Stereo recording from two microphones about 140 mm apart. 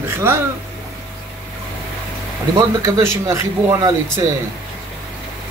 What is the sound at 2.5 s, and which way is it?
Speech, 25° right (ahead or behind).